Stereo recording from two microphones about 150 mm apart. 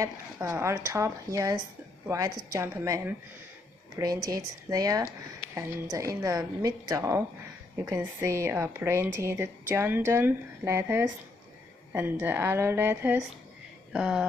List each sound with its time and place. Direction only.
0.0 s a woman's voice: 20° right (ahead or behind)